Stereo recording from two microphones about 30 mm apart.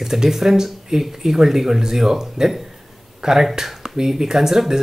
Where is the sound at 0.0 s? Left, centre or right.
Centre.